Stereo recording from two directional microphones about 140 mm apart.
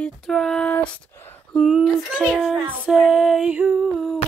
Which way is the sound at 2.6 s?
5° right (ahead or behind).